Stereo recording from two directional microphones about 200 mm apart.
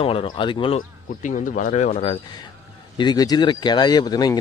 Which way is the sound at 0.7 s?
40° left (ahead or behind).